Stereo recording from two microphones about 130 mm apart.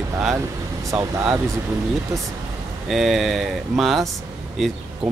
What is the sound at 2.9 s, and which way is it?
Speech, centre (ahead or behind).